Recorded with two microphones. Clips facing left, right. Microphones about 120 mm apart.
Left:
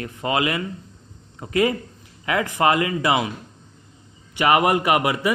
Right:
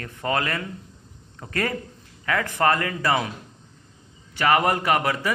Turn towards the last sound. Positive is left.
turn(degrees=15)  # may be behind; listen again after turning